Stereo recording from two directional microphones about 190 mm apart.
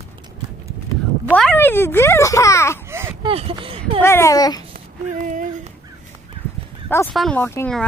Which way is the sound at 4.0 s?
15° left (ahead or behind).